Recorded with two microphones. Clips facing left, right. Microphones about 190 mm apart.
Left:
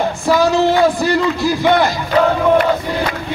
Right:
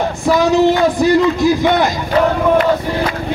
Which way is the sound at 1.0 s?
20° right (ahead or behind).